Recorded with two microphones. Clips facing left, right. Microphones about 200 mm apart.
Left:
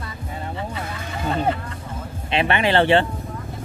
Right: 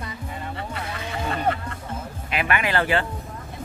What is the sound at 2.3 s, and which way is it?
Speech, 30° left (ahead or behind).